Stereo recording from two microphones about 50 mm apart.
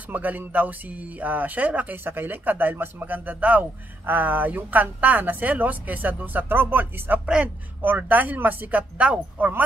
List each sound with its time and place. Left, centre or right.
0.1 s speech: right
2.0 s speech: right